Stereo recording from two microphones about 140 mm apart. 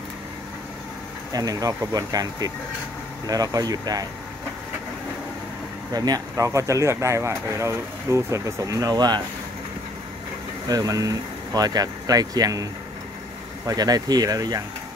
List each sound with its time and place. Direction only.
1.3 s speech: 25° right (ahead or behind)
5.9 s speech: 30° right (ahead or behind)
10.7 s speech: 25° right (ahead or behind)
13.7 s speech: 30° right (ahead or behind)